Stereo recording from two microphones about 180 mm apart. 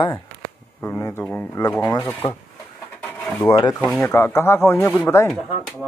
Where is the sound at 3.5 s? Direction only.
30° left (ahead or behind).